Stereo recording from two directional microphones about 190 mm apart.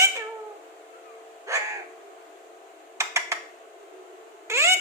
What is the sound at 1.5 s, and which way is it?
Owl, 15° right (ahead or behind).